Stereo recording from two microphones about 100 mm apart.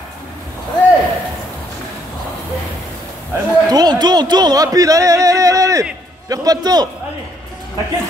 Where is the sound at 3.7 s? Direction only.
45° right (ahead or behind).